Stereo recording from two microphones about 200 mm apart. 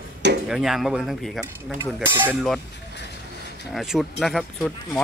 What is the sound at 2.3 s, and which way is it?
Speech, centre (ahead or behind).